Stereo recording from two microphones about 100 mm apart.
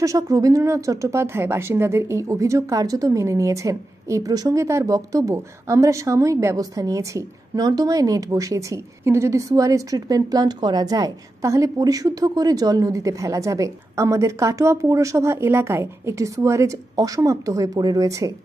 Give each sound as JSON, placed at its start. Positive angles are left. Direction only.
{"t": 0.0, "sound": "speech", "side_deg": -35}